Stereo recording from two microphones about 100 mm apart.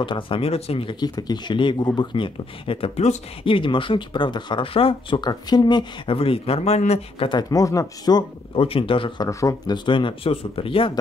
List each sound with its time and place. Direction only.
0.0 s speech: 55° left (ahead or behind)
0.4 s speech: 90° left; by 0.9 s 75° left (ahead or behind)
0.9 s speech: 45° left (ahead or behind); by 5.2 s 60° left (ahead or behind)
5.2 s speech: 45° left (ahead or behind)
6.1 s a man's voice: 70° left (ahead or behind); by 7.2 s 90° left
7.2 s speech: 40° left (ahead or behind)
8.5 s speech: 65° left (ahead or behind)
9.2 s speech: 35° left (ahead or behind)
9.8 s speech: 55° left (ahead or behind)